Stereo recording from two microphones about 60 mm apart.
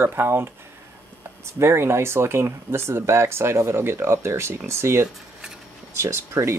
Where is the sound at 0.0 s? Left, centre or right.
Right.